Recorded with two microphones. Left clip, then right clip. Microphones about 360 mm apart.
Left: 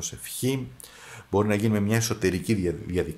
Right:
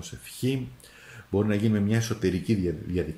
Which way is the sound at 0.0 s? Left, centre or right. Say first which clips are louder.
Left 2 dB; centre.